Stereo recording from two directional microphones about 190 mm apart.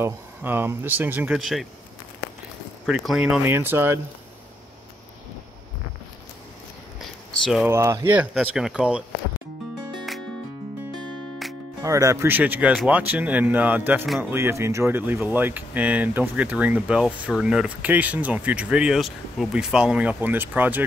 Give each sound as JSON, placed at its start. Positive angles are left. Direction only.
{"t": 0.0, "sound": "speech", "side_deg": -10}
{"t": 2.9, "sound": "speech", "side_deg": 0}
{"t": 7.6, "sound": "speech", "side_deg": -15}
{"t": 11.8, "sound": "speech", "side_deg": -15}